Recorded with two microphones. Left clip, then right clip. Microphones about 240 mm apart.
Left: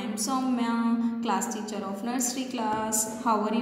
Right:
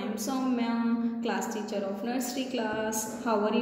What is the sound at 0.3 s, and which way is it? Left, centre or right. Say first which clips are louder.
Speech: left 3 dB; left.